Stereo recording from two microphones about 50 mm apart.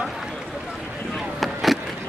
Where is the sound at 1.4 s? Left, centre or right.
Centre.